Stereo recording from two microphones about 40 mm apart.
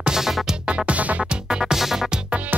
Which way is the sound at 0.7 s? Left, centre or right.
Right.